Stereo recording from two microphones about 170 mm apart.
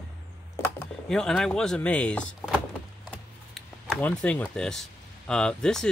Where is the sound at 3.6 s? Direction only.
Centre (ahead or behind).